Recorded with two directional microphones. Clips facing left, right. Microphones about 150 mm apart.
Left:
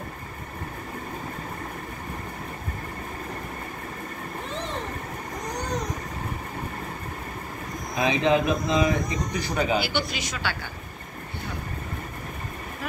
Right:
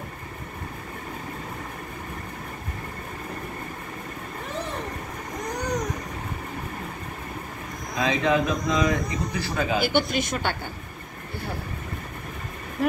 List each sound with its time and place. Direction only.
7.9 s a man's voice: 20° left (ahead or behind)
9.8 s a woman's voice: 50° right (ahead or behind)